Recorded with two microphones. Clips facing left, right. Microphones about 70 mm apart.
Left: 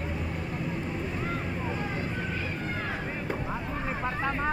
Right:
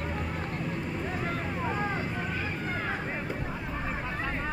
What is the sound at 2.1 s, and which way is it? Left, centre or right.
Run, centre.